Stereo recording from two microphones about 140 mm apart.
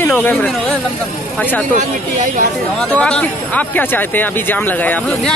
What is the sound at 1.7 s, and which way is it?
Speech, 65° right (ahead or behind).